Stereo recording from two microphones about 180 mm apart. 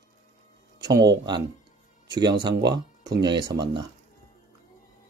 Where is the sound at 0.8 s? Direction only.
20° right (ahead or behind).